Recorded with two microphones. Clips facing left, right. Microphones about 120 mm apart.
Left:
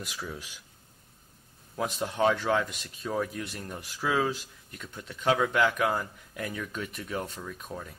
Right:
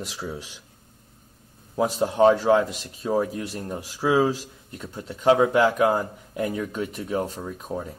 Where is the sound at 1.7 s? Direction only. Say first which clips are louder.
Right 8 dB; 35° right (ahead or behind).